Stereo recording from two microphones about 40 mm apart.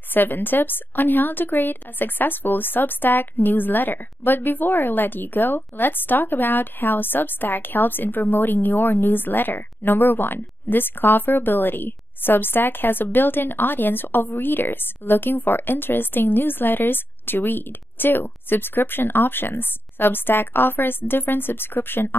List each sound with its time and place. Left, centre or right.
0.1 s a woman's voice: left